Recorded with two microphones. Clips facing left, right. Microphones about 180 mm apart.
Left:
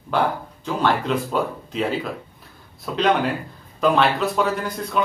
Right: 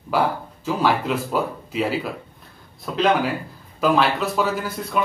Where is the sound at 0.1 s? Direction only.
5° right (ahead or behind).